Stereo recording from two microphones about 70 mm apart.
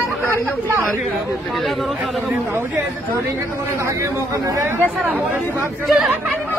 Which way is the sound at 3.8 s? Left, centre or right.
Right.